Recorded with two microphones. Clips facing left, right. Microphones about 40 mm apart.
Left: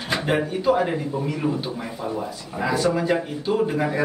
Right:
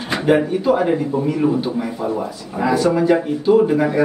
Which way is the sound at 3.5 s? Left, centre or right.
Centre.